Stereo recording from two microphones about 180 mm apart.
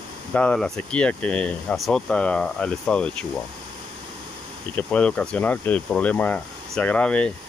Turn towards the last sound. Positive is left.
turn(degrees=5)  # may be behind; listen again after turning